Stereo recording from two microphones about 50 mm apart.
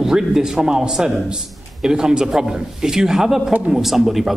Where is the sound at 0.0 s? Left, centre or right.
Centre.